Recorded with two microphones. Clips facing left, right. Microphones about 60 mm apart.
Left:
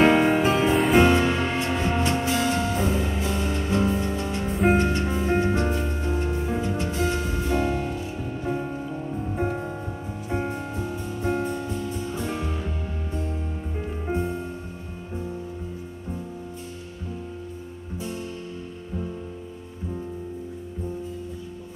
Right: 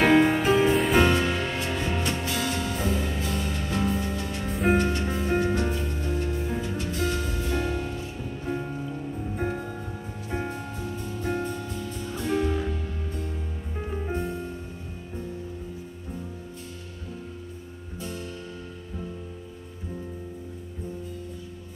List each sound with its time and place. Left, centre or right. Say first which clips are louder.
0.0 s music: left 1 dB; centre
4.5 s music: left 3 dB; centre
4.7 s music: left 2 dB; centre
9.3 s music: left 3 dB; left
10.3 s music: left 4 dB; centre
14.0 s music: left 5 dB; centre